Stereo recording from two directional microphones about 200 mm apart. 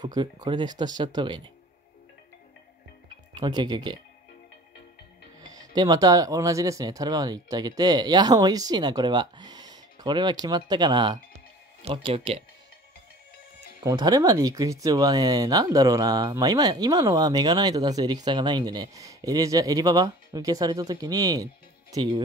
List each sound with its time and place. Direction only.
0.0 s speech: 20° right (ahead or behind)
3.3 s speech: 20° right (ahead or behind)
5.4 s music: 20° right (ahead or behind)
5.8 s speech: 20° right (ahead or behind)
13.8 s speech: 20° right (ahead or behind)